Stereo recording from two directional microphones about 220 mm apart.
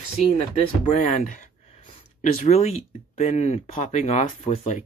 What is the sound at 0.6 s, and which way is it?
Speech, 30° left (ahead or behind).